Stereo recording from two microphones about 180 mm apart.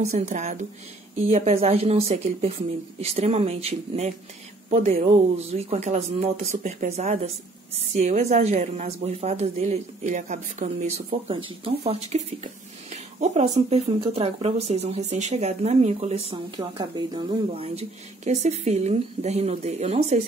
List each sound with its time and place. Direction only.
0.0 s speech: 40° right (ahead or behind)
16.5 s speech: 25° right (ahead or behind)